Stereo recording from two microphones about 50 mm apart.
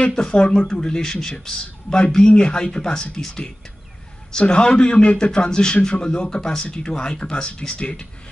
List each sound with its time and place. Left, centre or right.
0.0 s speech: centre